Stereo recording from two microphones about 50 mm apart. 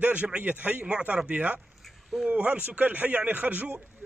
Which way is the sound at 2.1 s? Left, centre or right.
Centre.